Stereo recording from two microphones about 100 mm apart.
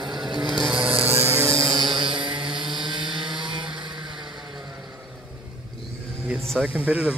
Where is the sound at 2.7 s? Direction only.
50° right (ahead or behind).